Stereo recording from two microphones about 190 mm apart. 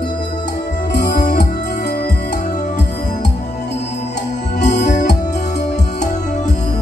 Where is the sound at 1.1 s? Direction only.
40° left (ahead or behind).